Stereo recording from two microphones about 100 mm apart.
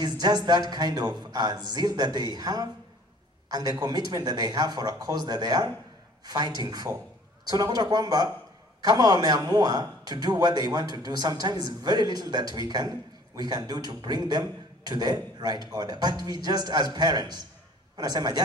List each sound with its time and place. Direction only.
0.0 s a man's voice: 45° right (ahead or behind)